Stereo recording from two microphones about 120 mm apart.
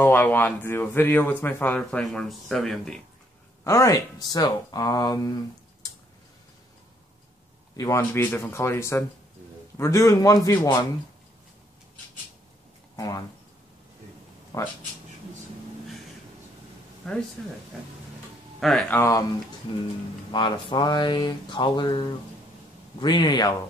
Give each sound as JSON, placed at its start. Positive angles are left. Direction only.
{"t": 0.0, "sound": "speech", "side_deg": 15}
{"t": 3.6, "sound": "speech", "side_deg": 25}
{"t": 4.2, "sound": "a sound", "side_deg": 35}
{"t": 7.7, "sound": "speech", "side_deg": 25}
{"t": 12.9, "sound": "speech", "side_deg": 30}
{"t": 14.5, "sound": "speech", "side_deg": 30}
{"t": 17.4, "sound": "speech", "side_deg": 10}
{"t": 18.6, "sound": "speech", "side_deg": 0}
{"t": 18.9, "sound": "speech", "side_deg": 20}
{"t": 20.2, "sound": "a sound", "side_deg": 40}